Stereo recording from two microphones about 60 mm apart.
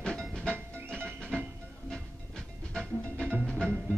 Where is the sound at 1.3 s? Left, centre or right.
Centre.